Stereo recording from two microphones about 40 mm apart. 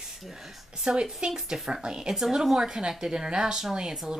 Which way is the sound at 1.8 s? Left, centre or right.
Right.